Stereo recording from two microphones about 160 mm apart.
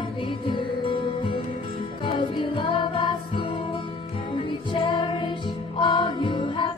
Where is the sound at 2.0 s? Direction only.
35° left (ahead or behind).